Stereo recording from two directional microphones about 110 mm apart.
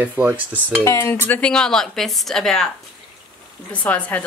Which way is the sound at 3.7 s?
15° left (ahead or behind).